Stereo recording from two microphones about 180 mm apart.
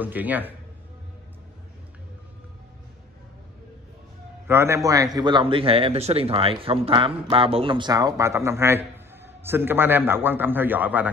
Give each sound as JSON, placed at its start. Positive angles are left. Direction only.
{"t": 0.0, "sound": "a man's voice", "side_deg": -10}
{"t": 4.5, "sound": "a man's voice", "side_deg": -15}